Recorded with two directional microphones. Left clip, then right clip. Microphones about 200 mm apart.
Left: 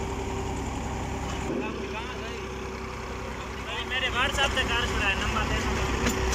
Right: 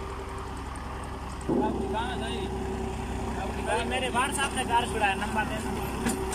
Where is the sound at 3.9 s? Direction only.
65° right (ahead or behind).